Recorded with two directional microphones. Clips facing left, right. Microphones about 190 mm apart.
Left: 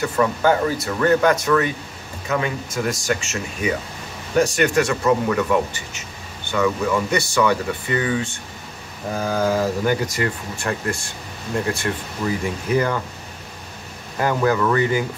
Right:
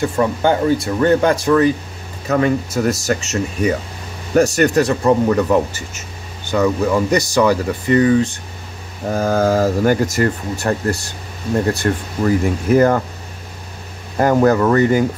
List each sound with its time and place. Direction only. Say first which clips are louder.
0.0 s speech: right 2 dB; 30° right (ahead or behind); by 13.0 s 45° right (ahead or behind)
14.1 s speech: right 6 dB; 45° right (ahead or behind)